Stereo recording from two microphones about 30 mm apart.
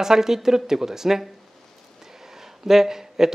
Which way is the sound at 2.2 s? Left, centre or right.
Centre.